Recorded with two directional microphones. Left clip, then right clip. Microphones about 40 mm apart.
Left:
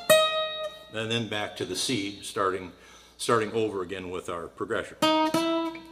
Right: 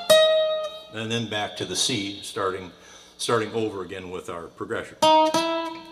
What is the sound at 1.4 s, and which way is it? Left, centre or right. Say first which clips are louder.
Speech: right 4 dB; right.